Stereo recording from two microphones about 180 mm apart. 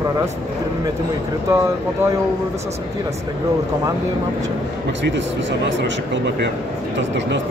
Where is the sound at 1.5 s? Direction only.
15° right (ahead or behind).